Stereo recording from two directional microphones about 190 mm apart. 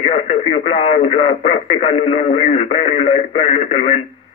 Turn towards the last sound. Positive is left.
turn(degrees=35)  # may be behind; listen again after turning